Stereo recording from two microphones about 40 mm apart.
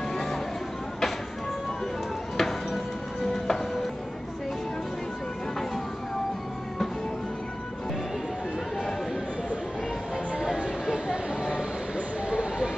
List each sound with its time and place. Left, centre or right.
0.1 s vehicle: centre
2.3 s music: centre
12.3 s a sound: centre